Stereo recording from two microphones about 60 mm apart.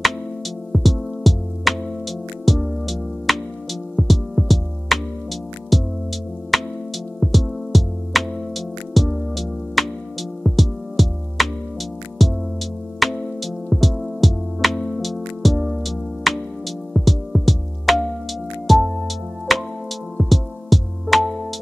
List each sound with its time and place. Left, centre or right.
0.7 s music: centre